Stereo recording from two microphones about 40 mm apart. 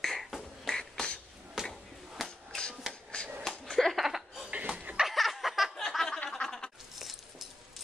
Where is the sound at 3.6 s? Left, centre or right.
Centre.